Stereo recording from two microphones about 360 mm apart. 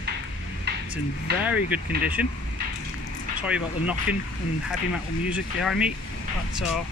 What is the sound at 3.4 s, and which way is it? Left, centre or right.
Speech, centre.